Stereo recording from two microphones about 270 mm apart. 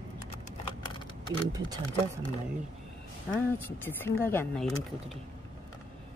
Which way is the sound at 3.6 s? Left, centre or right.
Centre.